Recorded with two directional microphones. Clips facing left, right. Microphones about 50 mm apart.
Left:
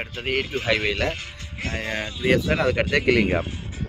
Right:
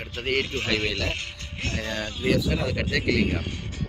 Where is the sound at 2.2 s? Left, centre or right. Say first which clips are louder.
Left 4 dB; left.